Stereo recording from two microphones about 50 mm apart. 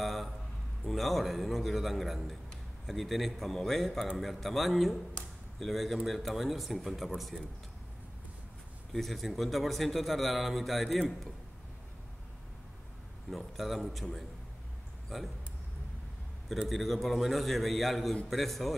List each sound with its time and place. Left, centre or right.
0.0 s a sound: centre
0.8 s a man's voice: centre
8.9 s a man's voice: centre
13.3 s a man's voice: centre
15.1 s speech: centre
16.6 s a man's voice: centre